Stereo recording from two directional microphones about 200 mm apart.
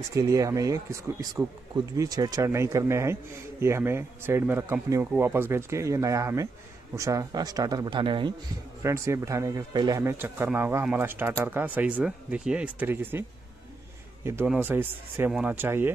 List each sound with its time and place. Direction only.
0.1 s a man's voice: 15° right (ahead or behind)
8.8 s a man's voice: 15° right (ahead or behind)
14.2 s a man's voice: 10° right (ahead or behind)